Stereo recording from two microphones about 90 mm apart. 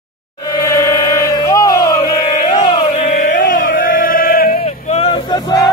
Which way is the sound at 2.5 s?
60° left (ahead or behind).